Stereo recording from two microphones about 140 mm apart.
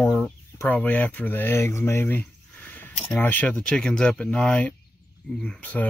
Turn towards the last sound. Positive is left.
turn(degrees=10)  # may be behind; listen again after turning